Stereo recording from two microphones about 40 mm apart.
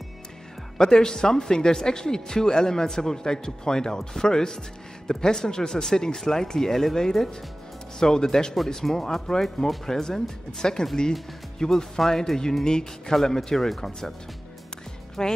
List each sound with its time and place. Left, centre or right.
0.7 s speech: centre
15.2 s speech: centre